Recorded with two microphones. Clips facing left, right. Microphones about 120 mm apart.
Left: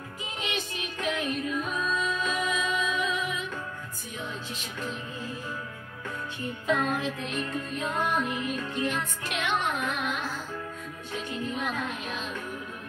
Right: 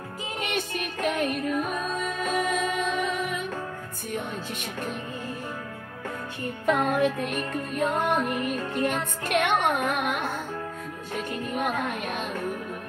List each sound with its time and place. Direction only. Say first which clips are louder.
0.4 s music: right 4 dB; 50° right (ahead or behind)
6.6 s music: right 5 dB; 55° right (ahead or behind)